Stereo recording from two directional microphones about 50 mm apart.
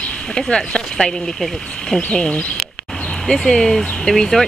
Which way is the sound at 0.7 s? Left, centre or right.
Centre.